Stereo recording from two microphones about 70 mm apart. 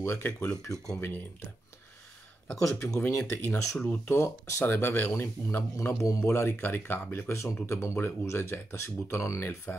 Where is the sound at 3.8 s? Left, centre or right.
Left.